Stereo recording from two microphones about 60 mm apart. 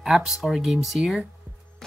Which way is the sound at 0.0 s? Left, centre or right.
Centre.